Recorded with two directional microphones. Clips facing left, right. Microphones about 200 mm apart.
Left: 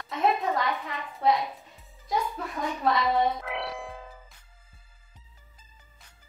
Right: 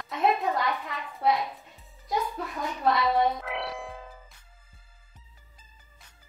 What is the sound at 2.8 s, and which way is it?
A child's voice, centre (ahead or behind).